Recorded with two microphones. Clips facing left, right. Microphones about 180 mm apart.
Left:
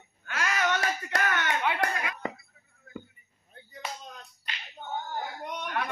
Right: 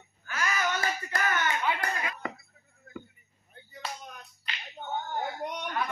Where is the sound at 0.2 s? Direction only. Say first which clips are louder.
Left 1 dB; 70° left (ahead or behind).